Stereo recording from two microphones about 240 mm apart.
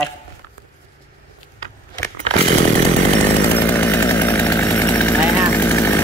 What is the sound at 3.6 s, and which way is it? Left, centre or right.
Chainsaw, centre.